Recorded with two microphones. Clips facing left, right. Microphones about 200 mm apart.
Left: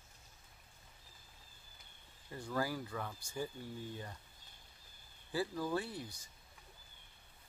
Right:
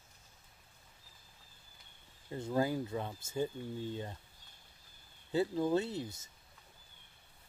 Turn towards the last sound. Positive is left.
turn(degrees=-25)  # may be behind; listen again after turning